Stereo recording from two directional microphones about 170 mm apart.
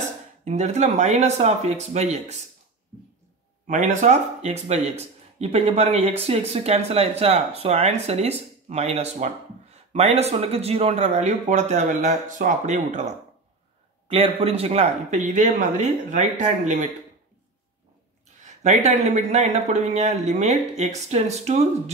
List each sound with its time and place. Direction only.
0.0 s speech: 40° right (ahead or behind)
3.6 s speech: 45° right (ahead or behind)
14.0 s speech: 35° right (ahead or behind)
18.4 s speech: 45° right (ahead or behind)